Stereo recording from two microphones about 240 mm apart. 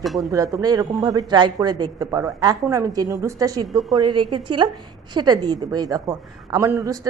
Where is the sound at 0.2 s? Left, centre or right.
Centre.